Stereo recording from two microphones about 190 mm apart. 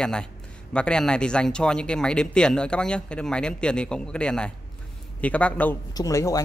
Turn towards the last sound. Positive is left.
turn(degrees=15)  # may be behind; listen again after turning